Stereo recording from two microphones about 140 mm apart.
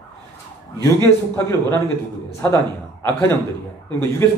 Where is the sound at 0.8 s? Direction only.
15° left (ahead or behind).